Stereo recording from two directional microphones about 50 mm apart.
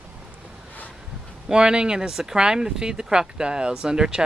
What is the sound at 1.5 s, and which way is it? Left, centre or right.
Speech, centre.